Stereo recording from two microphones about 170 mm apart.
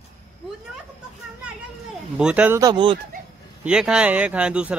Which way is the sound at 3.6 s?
5° right (ahead or behind).